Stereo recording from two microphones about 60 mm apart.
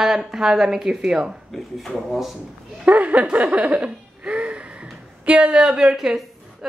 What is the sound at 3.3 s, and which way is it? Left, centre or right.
Laughter, right.